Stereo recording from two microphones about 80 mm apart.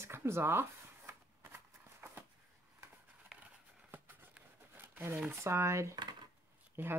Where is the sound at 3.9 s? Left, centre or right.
Right.